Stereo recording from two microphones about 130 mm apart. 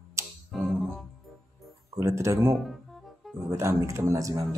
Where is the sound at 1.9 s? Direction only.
20° right (ahead or behind).